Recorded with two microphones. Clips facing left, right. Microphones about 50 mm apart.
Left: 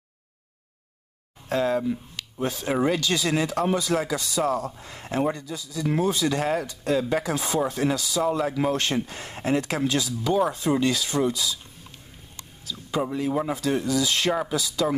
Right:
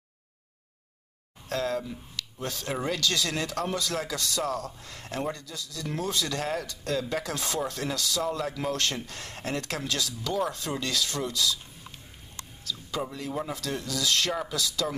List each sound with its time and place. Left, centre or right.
1.5 s speech: left
12.9 s speech: centre